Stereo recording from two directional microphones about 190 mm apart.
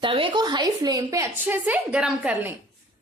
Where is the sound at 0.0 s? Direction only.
25° right (ahead or behind); by 2.5 s 5° right (ahead or behind).